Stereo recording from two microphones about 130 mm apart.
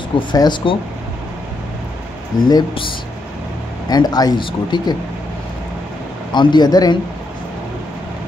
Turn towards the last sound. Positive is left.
turn(degrees=30)  # may be behind; listen again after turning